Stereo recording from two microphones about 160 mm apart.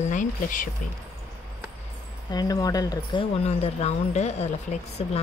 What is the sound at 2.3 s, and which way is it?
Speech, 25° left (ahead or behind).